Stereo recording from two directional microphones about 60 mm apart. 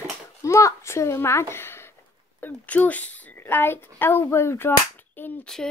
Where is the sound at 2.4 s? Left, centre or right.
Left.